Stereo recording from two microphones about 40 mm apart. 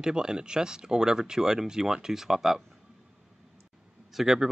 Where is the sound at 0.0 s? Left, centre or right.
Centre.